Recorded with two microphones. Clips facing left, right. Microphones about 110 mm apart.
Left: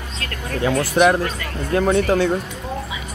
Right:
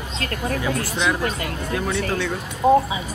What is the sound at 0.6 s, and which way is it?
Speech, 50° left (ahead or behind).